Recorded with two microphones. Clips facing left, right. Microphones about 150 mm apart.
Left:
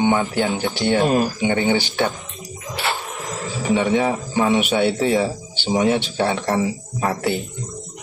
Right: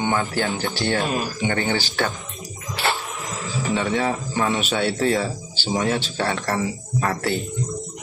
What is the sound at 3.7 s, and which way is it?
A man's voice, 15° left (ahead or behind).